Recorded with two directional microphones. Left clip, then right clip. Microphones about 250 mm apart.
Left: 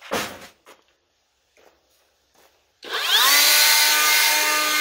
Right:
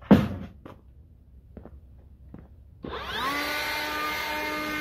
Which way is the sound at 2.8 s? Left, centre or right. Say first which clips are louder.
Left 12 dB; left.